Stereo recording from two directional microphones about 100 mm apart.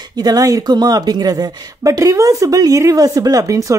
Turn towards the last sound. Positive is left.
turn(degrees=-35)  # may be behind; listen again after turning